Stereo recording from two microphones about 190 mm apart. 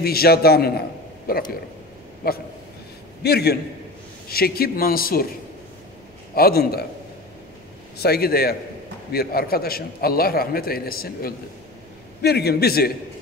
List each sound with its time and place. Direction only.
0.0 s a man's voice: 55° left (ahead or behind)
6.3 s a man's voice: 55° left (ahead or behind)
8.0 s a man's voice: 55° left (ahead or behind)